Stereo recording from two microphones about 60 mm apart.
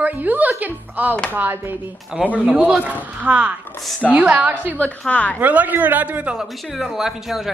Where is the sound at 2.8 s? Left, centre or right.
Right.